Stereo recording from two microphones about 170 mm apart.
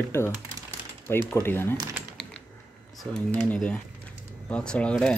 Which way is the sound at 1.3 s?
15° left (ahead or behind).